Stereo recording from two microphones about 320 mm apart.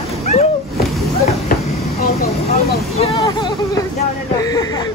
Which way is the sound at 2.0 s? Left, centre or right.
Left.